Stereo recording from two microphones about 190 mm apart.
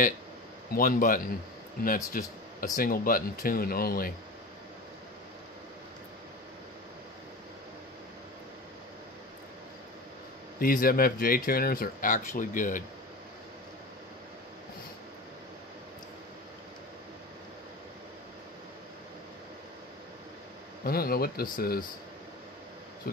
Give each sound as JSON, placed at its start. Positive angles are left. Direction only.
{"t": 0.7, "sound": "speech", "side_deg": 45}
{"t": 10.6, "sound": "speech", "side_deg": 50}
{"t": 20.8, "sound": "speech", "side_deg": 50}